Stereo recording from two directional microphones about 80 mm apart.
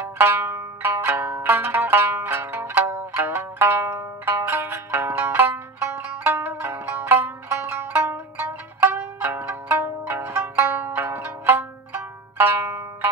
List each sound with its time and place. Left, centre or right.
0.0 s zither: right
6.2 s music: right
8.9 s zither: right